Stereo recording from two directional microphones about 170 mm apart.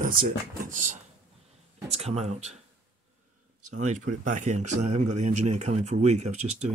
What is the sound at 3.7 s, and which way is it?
Speech, 45° right (ahead or behind).